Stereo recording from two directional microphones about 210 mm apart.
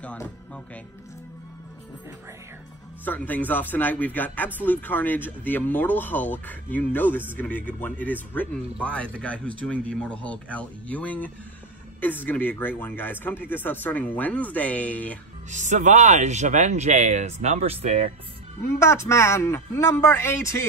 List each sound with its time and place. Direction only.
0.0 s speech: 5° left (ahead or behind)
3.1 s speech: 10° left (ahead or behind)
15.5 s speech: 35° right (ahead or behind)
18.7 s speech: 15° left (ahead or behind)